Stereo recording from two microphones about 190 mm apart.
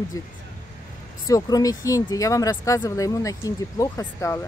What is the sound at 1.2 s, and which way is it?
Speech, 15° left (ahead or behind).